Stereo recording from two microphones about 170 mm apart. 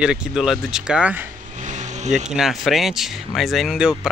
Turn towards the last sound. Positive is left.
turn(degrees=-5)  # may be behind; listen again after turning